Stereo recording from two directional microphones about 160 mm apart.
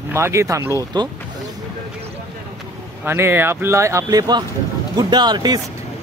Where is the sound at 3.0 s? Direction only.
15° right (ahead or behind).